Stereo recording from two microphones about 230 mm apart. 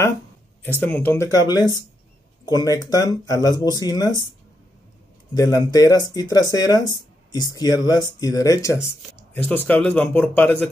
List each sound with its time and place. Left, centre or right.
0.7 s speech: centre
5.3 s speech: centre